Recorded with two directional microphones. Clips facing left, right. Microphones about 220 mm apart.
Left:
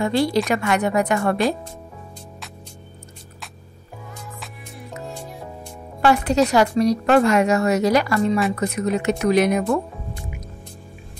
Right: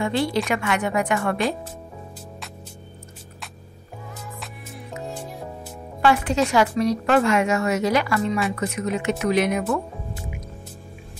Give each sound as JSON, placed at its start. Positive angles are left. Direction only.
{"t": 0.0, "sound": "a woman's voice", "side_deg": 40}
{"t": 4.9, "sound": "music", "side_deg": 0}
{"t": 6.0, "sound": "a woman's voice", "side_deg": 40}